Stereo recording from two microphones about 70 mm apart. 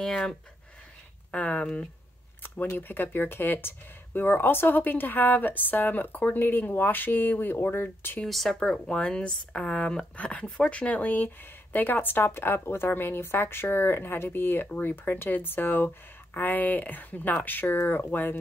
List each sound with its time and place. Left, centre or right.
0.0 s speech: centre
2.4 s a sound: left
2.9 s speech: left
8.3 s speech: centre
8.5 s speech: centre; by 18.4 s left